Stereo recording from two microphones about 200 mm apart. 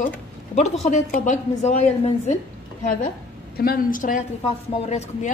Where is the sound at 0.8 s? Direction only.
40° left (ahead or behind).